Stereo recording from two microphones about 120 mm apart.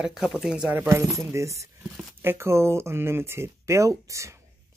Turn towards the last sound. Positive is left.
turn(degrees=-25)  # may be behind; listen again after turning